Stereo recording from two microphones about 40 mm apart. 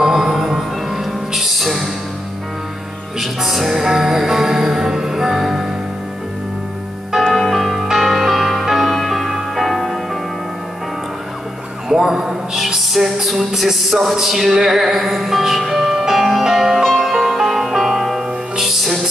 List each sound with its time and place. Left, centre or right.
0.0 s music: centre
3.2 s music: centre
7.3 s music: centre
11.9 s a sound: centre
12.5 s music: centre
13.6 s speech: centre
14.6 s music: centre